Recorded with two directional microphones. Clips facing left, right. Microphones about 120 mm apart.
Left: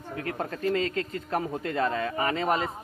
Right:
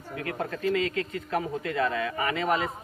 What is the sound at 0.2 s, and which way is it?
Speech, 30° left (ahead or behind).